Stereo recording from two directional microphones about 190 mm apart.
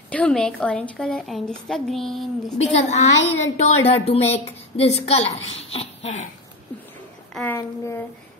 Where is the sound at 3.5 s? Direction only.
35° left (ahead or behind).